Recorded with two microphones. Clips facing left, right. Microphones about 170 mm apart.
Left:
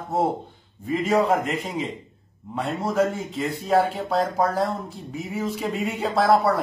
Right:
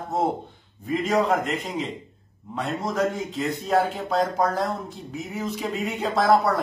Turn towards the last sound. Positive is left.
turn(degrees=0)  # may be behind; listen again after turning